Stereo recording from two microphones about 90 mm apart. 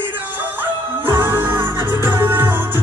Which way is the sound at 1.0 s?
25° right (ahead or behind).